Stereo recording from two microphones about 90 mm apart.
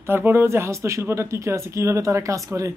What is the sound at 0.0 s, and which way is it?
Speech, 25° right (ahead or behind).